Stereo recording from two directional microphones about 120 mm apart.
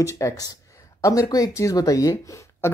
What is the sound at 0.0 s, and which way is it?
Speech, 25° left (ahead or behind).